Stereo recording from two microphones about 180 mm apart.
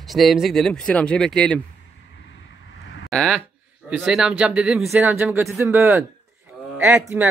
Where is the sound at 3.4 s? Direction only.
10° right (ahead or behind).